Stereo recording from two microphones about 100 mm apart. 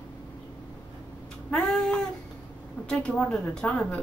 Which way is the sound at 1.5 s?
5° left (ahead or behind).